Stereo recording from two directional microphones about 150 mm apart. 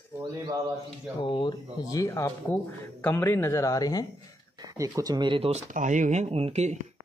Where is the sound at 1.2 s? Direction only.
35° left (ahead or behind).